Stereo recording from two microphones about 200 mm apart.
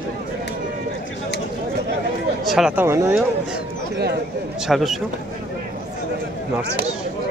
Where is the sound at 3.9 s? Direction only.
55° right (ahead or behind).